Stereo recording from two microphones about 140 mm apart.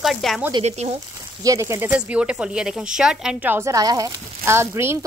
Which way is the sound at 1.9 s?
10° right (ahead or behind).